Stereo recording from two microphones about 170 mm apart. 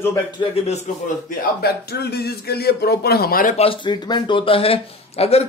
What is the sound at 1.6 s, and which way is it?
Speech, 70° left (ahead or behind).